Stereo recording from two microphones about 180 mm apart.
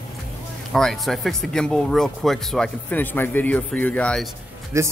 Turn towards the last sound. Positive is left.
turn(degrees=-15)  # may be behind; listen again after turning